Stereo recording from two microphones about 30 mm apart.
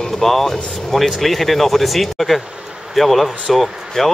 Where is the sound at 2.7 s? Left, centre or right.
Centre.